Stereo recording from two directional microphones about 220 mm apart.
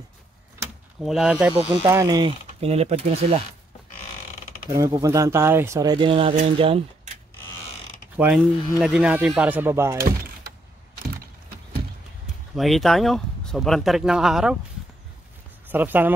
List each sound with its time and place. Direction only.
0.9 s speech: centre (ahead or behind)
1.5 s speech: 25° right (ahead or behind)
1.8 s speech: 15° right (ahead or behind); by 3.3 s 30° right (ahead or behind)
4.6 s speech: 15° right (ahead or behind)
8.2 s speech: 5° right (ahead or behind)
12.5 s speech: centre (ahead or behind)
15.7 s speech: 10° right (ahead or behind)